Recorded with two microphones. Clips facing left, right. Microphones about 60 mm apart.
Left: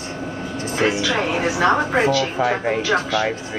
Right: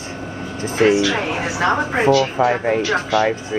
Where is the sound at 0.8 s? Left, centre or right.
Centre.